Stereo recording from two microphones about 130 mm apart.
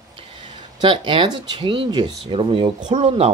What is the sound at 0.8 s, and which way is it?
Speech, 45° right (ahead or behind).